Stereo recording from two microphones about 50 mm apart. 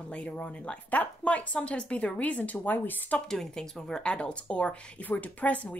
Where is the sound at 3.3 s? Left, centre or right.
Centre; by 5.8 s left.